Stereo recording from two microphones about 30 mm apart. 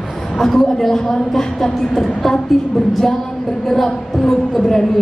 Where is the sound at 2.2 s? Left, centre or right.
Centre.